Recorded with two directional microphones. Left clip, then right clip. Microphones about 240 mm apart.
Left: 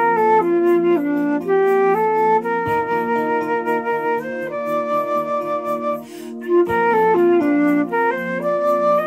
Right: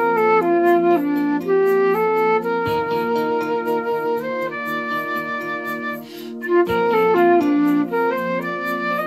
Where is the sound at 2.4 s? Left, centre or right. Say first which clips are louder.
Left 1 dB; right.